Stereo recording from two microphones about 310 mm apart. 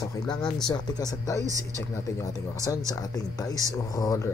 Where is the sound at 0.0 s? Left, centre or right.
Centre.